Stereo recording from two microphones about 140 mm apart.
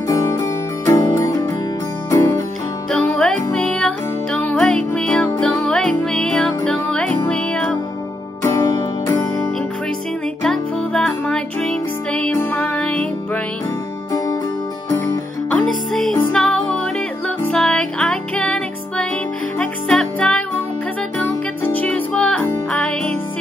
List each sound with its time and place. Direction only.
0.3 s music: 20° left (ahead or behind)
2.9 s music: 5° left (ahead or behind)
8.4 s music: 20° left (ahead or behind)
10.4 s music: 5° left (ahead or behind)
15.5 s music: 5° left (ahead or behind)
21.7 s music: 10° left (ahead or behind)